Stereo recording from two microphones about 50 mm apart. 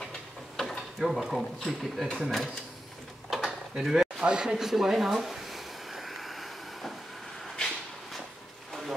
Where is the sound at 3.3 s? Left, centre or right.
Centre.